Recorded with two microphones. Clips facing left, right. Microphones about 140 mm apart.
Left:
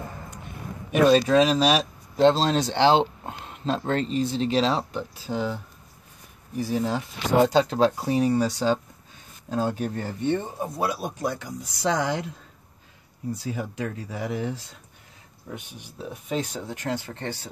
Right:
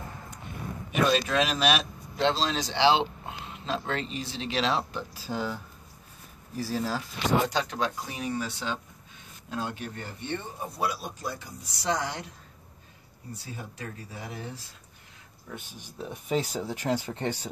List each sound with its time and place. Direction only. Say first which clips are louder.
1.1 s speech: left 8 dB; 35° left (ahead or behind); by 11.5 s 85° left
13.3 s speech: left 10 dB; 90° left
16.1 s speech: even; 5° right (ahead or behind)